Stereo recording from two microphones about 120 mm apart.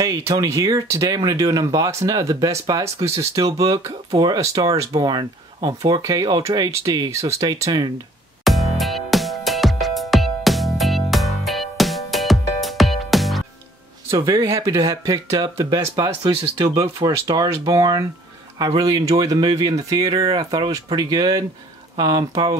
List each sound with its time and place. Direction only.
0.0 s speech: 25° right (ahead or behind)
8.5 s music: centre (ahead or behind)
14.1 s speech: 30° right (ahead or behind)